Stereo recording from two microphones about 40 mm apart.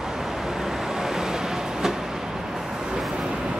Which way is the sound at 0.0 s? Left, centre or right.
Centre.